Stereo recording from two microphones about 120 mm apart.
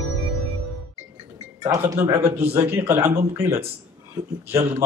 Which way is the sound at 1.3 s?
30° right (ahead or behind).